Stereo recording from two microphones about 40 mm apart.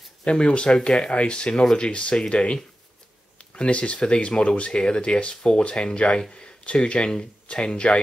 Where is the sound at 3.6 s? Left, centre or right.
Left.